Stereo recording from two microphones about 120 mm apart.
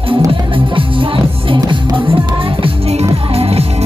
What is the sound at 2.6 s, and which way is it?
Music, 60° right (ahead or behind).